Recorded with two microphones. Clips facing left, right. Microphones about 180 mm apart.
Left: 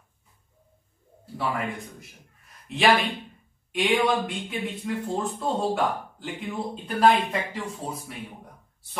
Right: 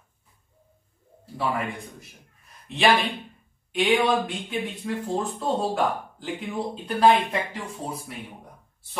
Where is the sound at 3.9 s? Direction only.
Centre (ahead or behind).